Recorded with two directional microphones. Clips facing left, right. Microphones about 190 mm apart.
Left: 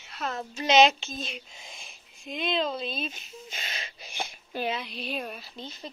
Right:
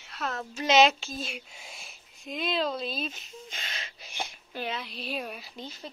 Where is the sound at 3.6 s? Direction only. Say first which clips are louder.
Left 2 dB; 15° left (ahead or behind).